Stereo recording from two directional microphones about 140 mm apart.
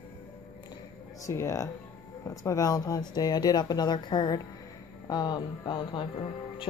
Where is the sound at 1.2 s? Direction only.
20° left (ahead or behind).